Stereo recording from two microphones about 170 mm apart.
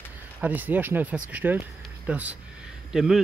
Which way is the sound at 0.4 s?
10° right (ahead or behind).